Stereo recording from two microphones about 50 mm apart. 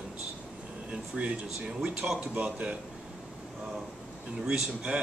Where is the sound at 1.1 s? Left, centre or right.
Right.